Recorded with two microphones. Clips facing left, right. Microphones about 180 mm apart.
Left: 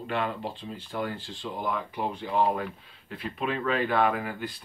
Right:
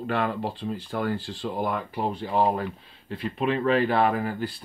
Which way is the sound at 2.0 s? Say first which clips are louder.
Right 2 dB; 35° right (ahead or behind).